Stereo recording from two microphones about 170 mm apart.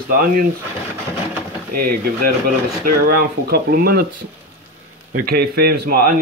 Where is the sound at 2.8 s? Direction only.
60° right (ahead or behind).